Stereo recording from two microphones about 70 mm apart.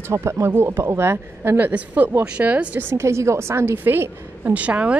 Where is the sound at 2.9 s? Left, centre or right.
Right.